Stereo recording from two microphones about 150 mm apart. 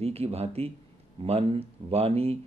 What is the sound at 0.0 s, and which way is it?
Speech, 45° right (ahead or behind).